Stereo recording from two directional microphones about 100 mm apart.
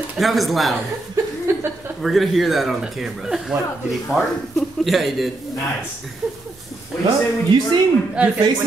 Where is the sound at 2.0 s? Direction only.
Centre (ahead or behind).